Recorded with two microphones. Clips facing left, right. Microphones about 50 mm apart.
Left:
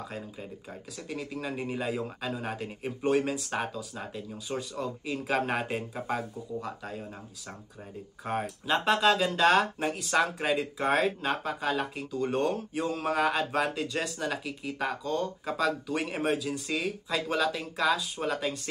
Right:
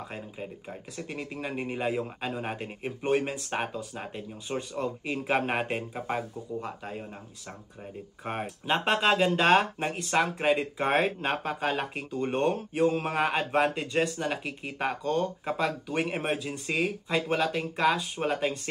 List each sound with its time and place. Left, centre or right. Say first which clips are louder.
0.9 s speech: even; right
8.3 s speech: even; right